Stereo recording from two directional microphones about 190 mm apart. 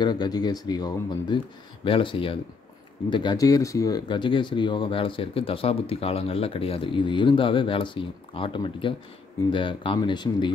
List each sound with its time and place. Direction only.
0.0 s speech: 20° left (ahead or behind)